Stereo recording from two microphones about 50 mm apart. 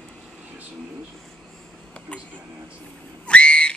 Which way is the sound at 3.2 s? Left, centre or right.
Left.